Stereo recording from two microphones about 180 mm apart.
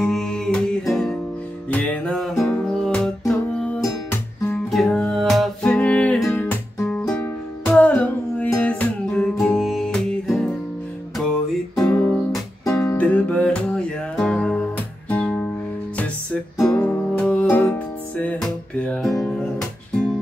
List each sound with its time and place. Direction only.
0.0 s music: centre (ahead or behind)
11.7 s music: 5° left (ahead or behind)
12.9 s music: 5° left (ahead or behind)
16.6 s music: 5° left (ahead or behind)
19.1 s guitar: 20° left (ahead or behind)